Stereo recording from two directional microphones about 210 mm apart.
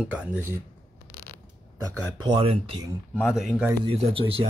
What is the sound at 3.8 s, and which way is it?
Speech, 25° right (ahead or behind).